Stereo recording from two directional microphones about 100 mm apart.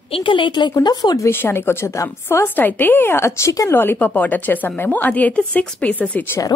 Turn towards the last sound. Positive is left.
turn(degrees=15)  # may be behind; listen again after turning